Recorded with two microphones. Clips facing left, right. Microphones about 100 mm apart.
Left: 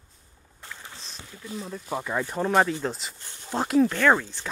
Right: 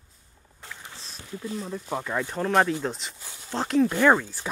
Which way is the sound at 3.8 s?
15° right (ahead or behind).